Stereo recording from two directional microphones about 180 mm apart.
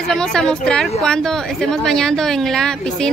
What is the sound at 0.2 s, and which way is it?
A woman's voice, 5° left (ahead or behind).